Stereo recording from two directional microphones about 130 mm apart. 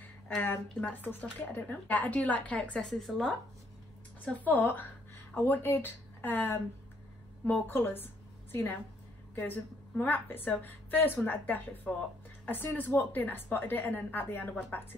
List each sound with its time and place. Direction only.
0.0 s speech: 15° left (ahead or behind)
4.2 s a woman's voice: 15° left (ahead or behind)